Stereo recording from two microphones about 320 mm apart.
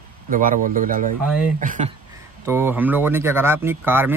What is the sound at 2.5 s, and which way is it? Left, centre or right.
Speech, centre.